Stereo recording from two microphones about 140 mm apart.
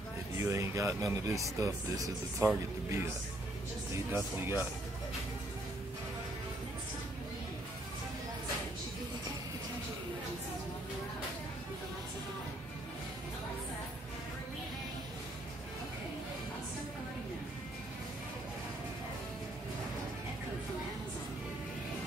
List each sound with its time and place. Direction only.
0.4 s speech: 20° right (ahead or behind)